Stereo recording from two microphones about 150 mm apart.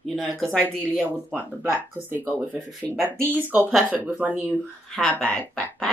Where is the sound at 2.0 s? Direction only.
10° right (ahead or behind).